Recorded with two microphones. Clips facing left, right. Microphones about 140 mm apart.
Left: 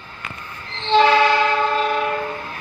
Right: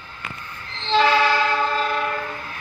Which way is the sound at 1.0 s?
15° left (ahead or behind).